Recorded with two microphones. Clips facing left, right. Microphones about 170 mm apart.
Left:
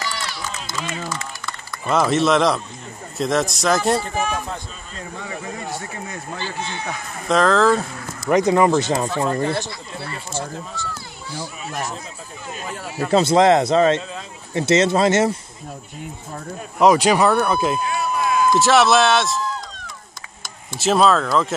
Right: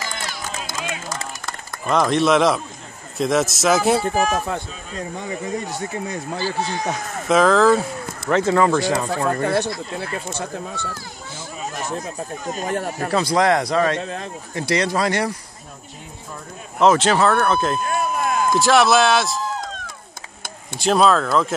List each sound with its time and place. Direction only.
0.0 s run: 45° right (ahead or behind)
1.9 s a man's voice: 5° left (ahead or behind)
4.1 s speech: 40° right (ahead or behind)
6.3 s speech: 40° right (ahead or behind)
7.2 s a man's voice: 5° right (ahead or behind)
8.3 s a man's voice: 15° left (ahead or behind)
9.4 s speech: 50° right (ahead or behind)
12.4 s speech: 45° right (ahead or behind)
13.1 s a man's voice: 25° left (ahead or behind)
16.8 s speech: 10° left (ahead or behind)
17.7 s a sound: 50° right (ahead or behind)
18.6 s a man's voice: centre (ahead or behind)
20.8 s a man's voice: centre (ahead or behind)